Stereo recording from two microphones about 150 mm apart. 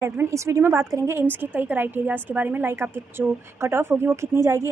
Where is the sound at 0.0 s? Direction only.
20° right (ahead or behind).